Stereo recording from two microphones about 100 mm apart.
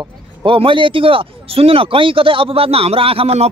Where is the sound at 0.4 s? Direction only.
60° right (ahead or behind).